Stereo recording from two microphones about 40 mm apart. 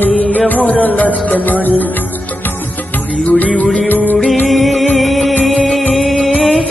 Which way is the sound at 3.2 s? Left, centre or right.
Left.